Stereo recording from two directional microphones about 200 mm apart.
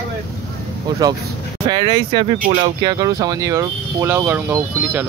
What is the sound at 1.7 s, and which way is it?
Speech, 25° right (ahead or behind).